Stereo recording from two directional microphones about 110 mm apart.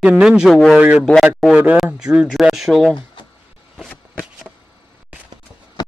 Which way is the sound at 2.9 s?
45° left (ahead or behind).